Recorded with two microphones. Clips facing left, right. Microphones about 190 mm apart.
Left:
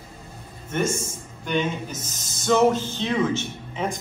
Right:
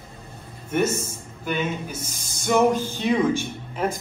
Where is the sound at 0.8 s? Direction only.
10° left (ahead or behind).